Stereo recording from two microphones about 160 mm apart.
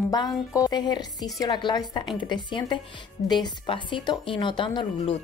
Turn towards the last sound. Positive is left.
turn(degrees=30)  # may be behind; listen again after turning